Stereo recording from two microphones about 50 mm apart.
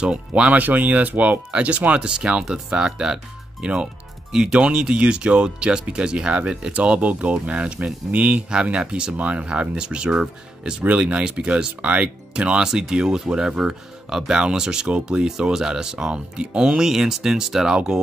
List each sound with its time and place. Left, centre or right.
0.0 s speech: right
0.6 s speech: right
15.2 s speech: centre